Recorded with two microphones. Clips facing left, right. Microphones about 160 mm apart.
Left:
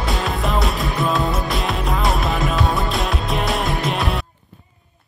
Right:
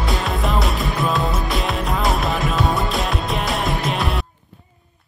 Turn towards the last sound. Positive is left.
turn(degrees=0)  # may be behind; listen again after turning